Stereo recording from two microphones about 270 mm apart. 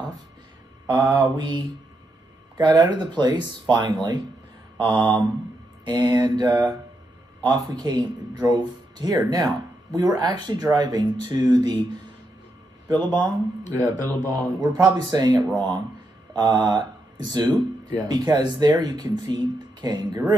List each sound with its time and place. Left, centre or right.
0.8 s speech: centre
14.3 s speech: centre